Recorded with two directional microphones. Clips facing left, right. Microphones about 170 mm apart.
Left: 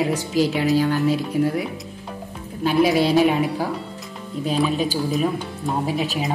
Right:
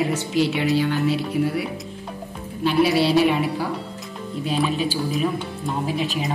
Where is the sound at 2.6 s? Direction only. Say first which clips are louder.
Left 1 dB; 45° left (ahead or behind).